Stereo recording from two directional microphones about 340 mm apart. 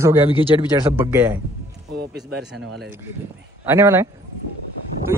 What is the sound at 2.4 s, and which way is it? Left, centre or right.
Speech, right.